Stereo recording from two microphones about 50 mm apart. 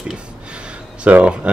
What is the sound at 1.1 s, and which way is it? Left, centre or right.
Speech, right.